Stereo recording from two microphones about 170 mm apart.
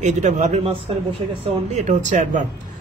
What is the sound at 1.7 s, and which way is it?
Speech, 45° right (ahead or behind).